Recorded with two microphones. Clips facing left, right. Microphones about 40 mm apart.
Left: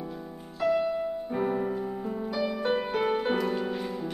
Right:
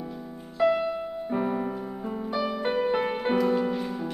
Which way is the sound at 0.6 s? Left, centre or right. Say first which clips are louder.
Right 2 dB; right.